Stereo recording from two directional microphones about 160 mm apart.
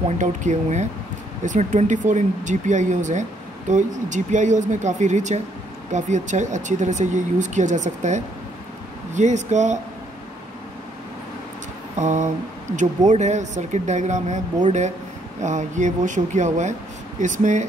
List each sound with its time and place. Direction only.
0.2 s speech: 50° right (ahead or behind)
12.0 s speech: 50° right (ahead or behind)